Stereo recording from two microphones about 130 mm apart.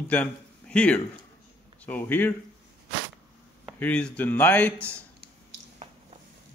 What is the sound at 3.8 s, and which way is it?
Speech, 10° left (ahead or behind).